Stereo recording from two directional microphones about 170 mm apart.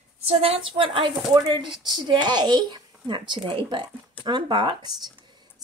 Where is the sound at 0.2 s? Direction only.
35° right (ahead or behind).